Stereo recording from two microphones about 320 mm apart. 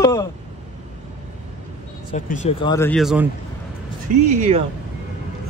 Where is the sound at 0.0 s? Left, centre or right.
Centre.